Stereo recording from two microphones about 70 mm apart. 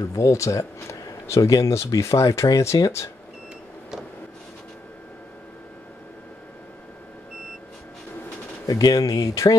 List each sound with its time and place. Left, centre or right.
0.1 s speech: left
8.6 s speech: left